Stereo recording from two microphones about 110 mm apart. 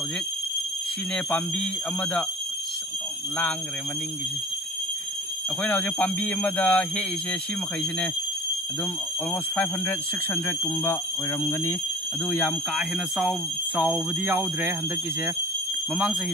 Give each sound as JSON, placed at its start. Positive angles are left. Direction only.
{"t": 1.1, "sound": "speech", "side_deg": 10}
{"t": 5.6, "sound": "speech", "side_deg": 10}
{"t": 9.6, "sound": "speech", "side_deg": 15}
{"t": 12.3, "sound": "speech", "side_deg": 5}
{"t": 13.2, "sound": "speech", "side_deg": -10}